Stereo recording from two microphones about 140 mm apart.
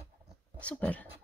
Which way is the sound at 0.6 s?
10° left (ahead or behind).